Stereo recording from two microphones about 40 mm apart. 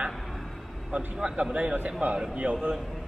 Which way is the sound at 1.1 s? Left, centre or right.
Right.